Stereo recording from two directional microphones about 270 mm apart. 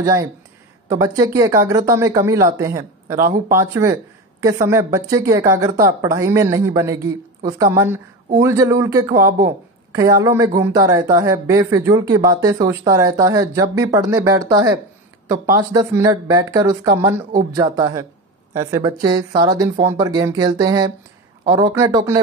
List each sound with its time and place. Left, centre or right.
0.0 s speech: centre
3.2 s speech: right
3.5 s speech: centre